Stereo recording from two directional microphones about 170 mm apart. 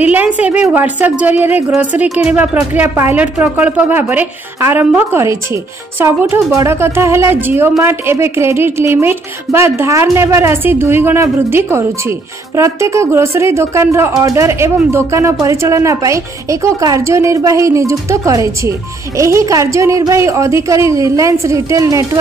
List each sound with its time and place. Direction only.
0.0 s speech: 10° right (ahead or behind)